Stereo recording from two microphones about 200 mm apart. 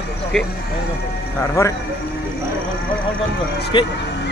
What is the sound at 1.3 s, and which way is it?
Speech, 15° left (ahead or behind).